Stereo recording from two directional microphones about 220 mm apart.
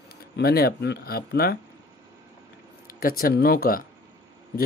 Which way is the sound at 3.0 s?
40° left (ahead or behind).